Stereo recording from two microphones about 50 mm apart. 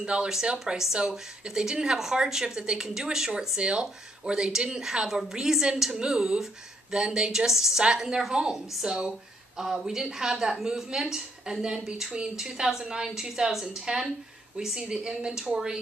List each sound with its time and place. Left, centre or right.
0.0 s a woman's voice: centre